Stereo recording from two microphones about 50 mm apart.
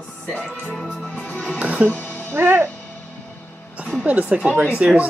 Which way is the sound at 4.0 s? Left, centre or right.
Right.